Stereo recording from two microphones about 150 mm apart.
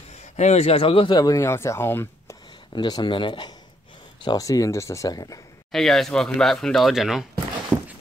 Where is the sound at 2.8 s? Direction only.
30° left (ahead or behind).